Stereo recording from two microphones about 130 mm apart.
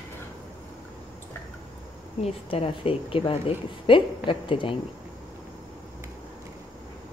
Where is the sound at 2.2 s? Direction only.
50° left (ahead or behind).